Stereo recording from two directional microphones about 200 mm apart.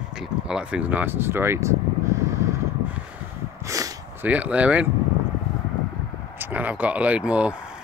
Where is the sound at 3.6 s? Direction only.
15° right (ahead or behind).